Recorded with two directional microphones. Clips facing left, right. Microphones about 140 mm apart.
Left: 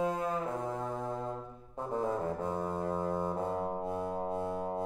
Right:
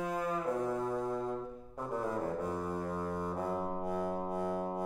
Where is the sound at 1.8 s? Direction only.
25° left (ahead or behind).